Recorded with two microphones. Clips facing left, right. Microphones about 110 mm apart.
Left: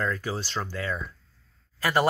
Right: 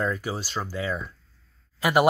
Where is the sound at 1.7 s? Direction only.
15° right (ahead or behind).